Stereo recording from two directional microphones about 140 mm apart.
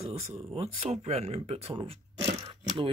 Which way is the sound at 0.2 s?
45° right (ahead or behind).